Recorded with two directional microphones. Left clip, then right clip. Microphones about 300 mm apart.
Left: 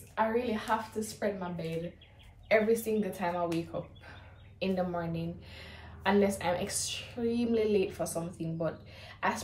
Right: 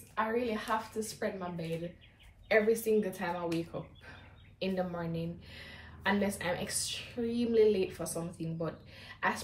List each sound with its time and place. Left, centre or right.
0.1 s a woman's voice: centre